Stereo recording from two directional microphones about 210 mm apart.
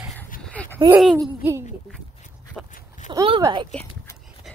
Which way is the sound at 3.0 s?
25° right (ahead or behind).